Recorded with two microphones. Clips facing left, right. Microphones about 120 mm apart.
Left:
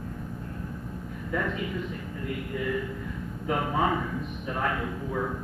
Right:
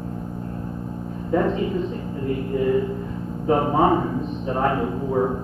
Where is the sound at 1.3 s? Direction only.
30° right (ahead or behind).